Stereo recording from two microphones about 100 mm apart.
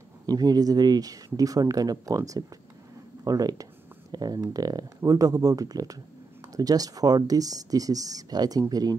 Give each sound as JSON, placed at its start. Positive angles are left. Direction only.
{"t": 0.3, "sound": "speech", "side_deg": -40}